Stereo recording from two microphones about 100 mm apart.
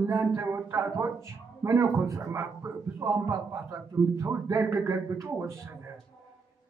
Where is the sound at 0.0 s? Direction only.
30° right (ahead or behind).